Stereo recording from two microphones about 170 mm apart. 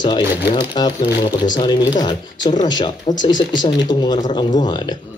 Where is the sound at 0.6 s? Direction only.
25° left (ahead or behind).